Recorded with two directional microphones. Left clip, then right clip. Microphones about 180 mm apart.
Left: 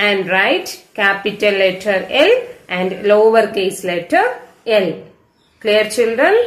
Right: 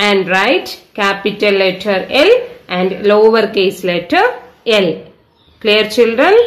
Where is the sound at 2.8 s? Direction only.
40° right (ahead or behind).